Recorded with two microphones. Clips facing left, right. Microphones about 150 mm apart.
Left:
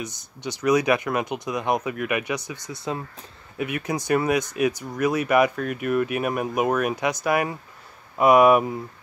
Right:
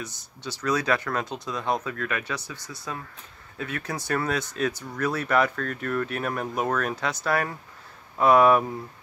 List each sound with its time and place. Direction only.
0.0 s speech: 20° left (ahead or behind)